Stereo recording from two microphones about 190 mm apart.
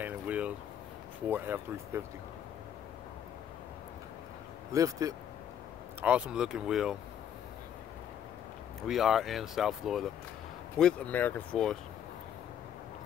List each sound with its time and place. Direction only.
0.0 s a sound: 10° right (ahead or behind)
1.3 s speech: 10° right (ahead or behind)
4.7 s speech: 15° right (ahead or behind)
5.9 s speech: 5° right (ahead or behind)
8.8 s speech: centre (ahead or behind)